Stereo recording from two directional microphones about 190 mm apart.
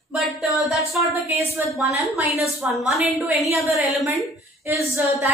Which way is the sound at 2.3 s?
15° left (ahead or behind).